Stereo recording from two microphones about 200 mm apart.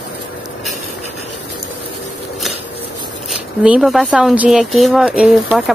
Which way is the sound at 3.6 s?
Centre (ahead or behind).